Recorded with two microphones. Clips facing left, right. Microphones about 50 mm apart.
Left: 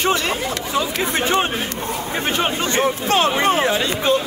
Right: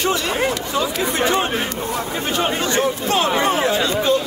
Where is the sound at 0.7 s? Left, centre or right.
Left.